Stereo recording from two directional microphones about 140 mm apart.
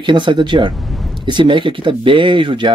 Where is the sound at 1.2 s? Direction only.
35° right (ahead or behind).